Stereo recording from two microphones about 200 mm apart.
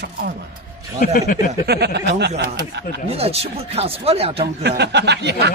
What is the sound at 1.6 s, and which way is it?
Speech, 55° right (ahead or behind).